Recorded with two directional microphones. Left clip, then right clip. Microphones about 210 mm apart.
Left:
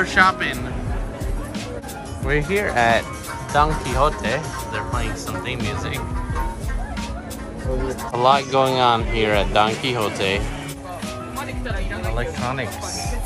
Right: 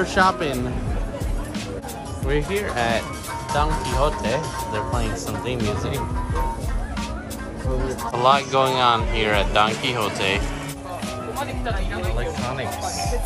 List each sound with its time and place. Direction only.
0.2 s speech: 20° right (ahead or behind)
2.2 s speech: 5° right (ahead or behind)
4.7 s speech: 15° right (ahead or behind)
5.6 s speech: centre (ahead or behind)
8.0 s speech: 10° right (ahead or behind)
12.2 s speech: centre (ahead or behind)